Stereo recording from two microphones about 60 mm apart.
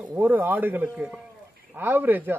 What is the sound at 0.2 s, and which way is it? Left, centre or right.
Speech, right.